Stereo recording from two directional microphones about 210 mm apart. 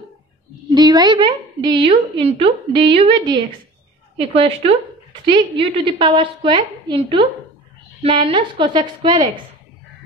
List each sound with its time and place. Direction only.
0.7 s a woman's voice: 20° right (ahead or behind)